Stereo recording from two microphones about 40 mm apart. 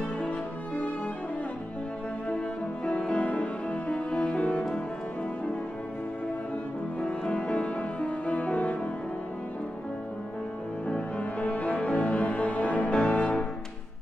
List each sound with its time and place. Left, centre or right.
2.3 s music: left
7.0 s music: left
10.9 s cello: left